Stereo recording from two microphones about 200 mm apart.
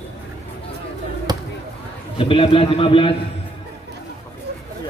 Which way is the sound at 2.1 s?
25° left (ahead or behind).